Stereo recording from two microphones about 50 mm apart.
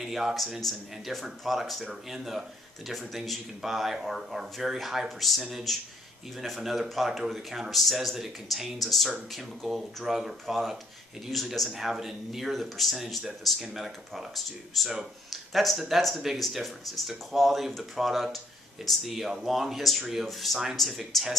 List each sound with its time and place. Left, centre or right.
0.0 s speech: centre
11.7 s speech: centre